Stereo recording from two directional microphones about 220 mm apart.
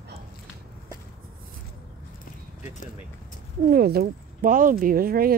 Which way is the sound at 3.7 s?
45° right (ahead or behind).